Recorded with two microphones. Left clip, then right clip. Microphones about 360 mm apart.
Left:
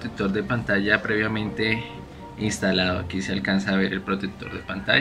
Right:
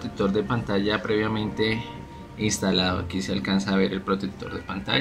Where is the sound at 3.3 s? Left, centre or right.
Centre.